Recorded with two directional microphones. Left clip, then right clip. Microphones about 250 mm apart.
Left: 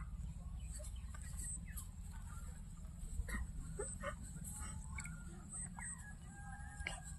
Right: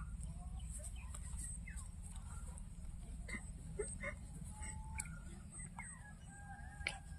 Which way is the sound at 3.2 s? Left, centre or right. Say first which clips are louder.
Even; centre.